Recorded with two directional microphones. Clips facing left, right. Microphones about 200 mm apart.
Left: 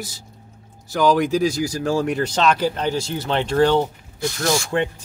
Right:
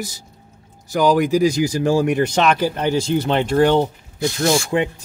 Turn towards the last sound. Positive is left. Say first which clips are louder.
# right 3 dB
turn(degrees=-15)  # may be behind; listen again after turning